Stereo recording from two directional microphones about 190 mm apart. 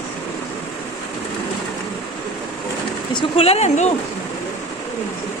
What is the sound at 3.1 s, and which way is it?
Speech, 30° left (ahead or behind).